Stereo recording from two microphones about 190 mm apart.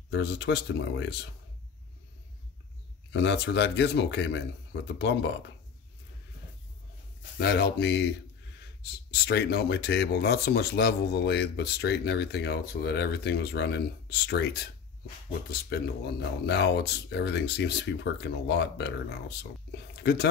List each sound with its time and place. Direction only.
0.1 s speech: 65° left (ahead or behind)
3.1 s speech: 65° left (ahead or behind)
7.3 s speech: 55° left (ahead or behind)
9.1 s speech: 60° left (ahead or behind)
15.7 s speech: 60° left (ahead or behind)